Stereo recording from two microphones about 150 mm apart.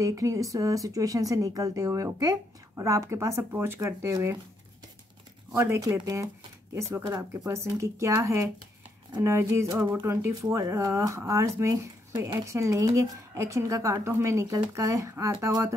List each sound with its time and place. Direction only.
0.0 s speech: 20° right (ahead or behind)
5.5 s speech: 20° right (ahead or behind)